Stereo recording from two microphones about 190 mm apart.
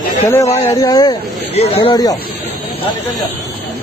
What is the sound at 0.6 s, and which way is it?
Speech, 20° left (ahead or behind).